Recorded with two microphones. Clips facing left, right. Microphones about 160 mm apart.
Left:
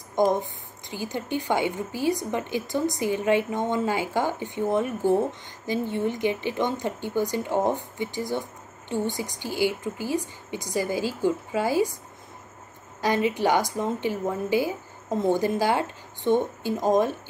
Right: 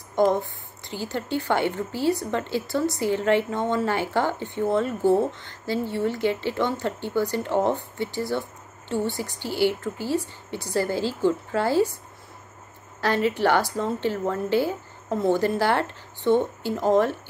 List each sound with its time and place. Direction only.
0.1 s a woman's voice: 15° left (ahead or behind)
13.0 s a woman's voice: 15° left (ahead or behind)